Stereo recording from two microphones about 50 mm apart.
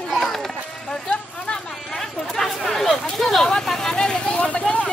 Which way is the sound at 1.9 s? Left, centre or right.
Centre.